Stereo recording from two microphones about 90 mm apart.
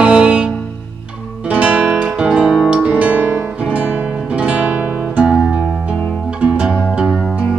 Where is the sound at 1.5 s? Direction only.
10° right (ahead or behind).